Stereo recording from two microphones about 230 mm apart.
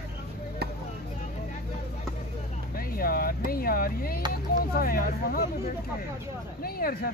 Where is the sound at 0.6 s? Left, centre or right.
Right.